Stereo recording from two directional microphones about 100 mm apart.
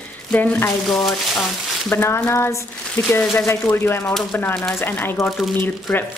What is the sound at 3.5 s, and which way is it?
Speech, 25° left (ahead or behind).